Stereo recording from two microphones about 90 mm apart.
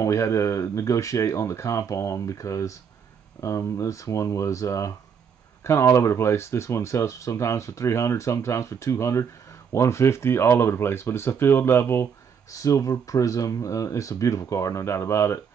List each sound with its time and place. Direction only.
0.0 s speech: 35° left (ahead or behind)